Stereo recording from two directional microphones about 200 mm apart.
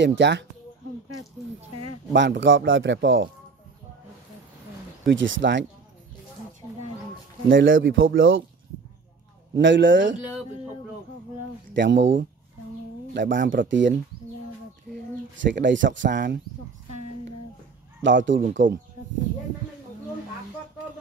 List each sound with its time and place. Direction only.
0.0 s speech: 60° right (ahead or behind)
2.1 s speech: 60° right (ahead or behind)
5.0 s speech: 65° right (ahead or behind)
7.4 s speech: 70° right (ahead or behind)
9.6 s speech: 65° right (ahead or behind)
11.7 s speech: 65° right (ahead or behind)
15.3 s speech: 65° right (ahead or behind)
16.1 s speech: 40° right (ahead or behind)
18.0 s speech: 65° right (ahead or behind)
18.6 s speech: 40° right (ahead or behind)